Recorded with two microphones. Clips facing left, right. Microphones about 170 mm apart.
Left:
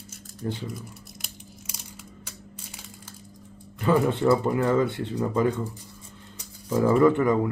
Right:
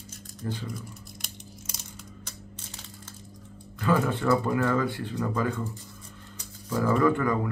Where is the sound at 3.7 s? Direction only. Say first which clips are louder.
Left 3 dB; 25° left (ahead or behind).